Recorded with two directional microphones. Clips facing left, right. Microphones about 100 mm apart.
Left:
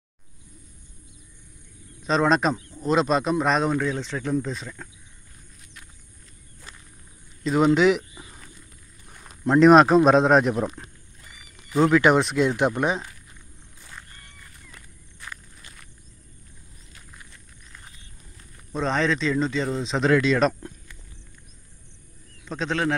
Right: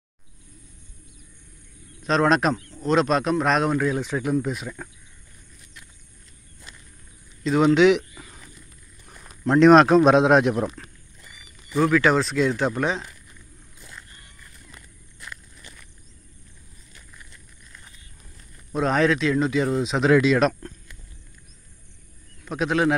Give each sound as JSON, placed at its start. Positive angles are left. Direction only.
{"t": 2.0, "sound": "speech", "side_deg": 0}
{"t": 7.4, "sound": "speech", "side_deg": 5}
{"t": 8.1, "sound": "a sound", "side_deg": 15}
{"t": 9.5, "sound": "speech", "side_deg": 5}
{"t": 11.7, "sound": "speech", "side_deg": 20}
{"t": 18.7, "sound": "speech", "side_deg": -5}
{"t": 22.4, "sound": "speech", "side_deg": -10}